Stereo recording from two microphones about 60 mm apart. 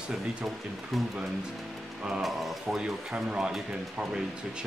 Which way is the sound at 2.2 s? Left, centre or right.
Centre.